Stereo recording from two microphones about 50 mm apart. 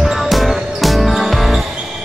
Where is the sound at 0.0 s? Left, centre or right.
Centre.